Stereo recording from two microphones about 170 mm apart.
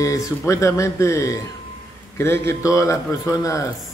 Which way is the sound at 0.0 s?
20° left (ahead or behind).